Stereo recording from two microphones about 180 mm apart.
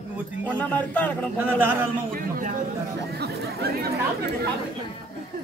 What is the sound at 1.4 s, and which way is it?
Speech, 10° right (ahead or behind).